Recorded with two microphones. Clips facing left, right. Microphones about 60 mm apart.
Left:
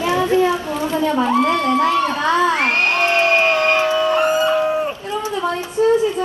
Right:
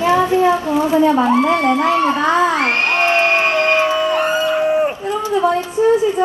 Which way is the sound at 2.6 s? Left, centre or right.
Right.